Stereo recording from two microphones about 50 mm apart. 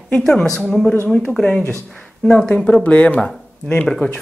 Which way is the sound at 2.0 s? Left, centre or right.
Centre.